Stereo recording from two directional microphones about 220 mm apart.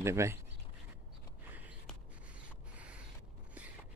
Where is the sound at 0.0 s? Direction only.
10° right (ahead or behind).